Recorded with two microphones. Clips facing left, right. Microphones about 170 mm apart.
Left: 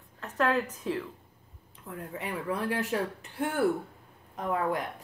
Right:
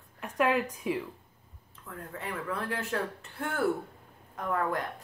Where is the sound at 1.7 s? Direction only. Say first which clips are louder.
Left 3 dB; 15° left (ahead or behind).